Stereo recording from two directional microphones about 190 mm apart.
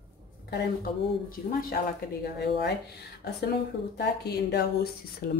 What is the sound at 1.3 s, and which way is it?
Speech, 50° left (ahead or behind).